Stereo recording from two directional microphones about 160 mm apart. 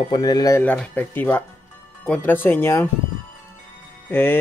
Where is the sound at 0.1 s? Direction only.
25° left (ahead or behind).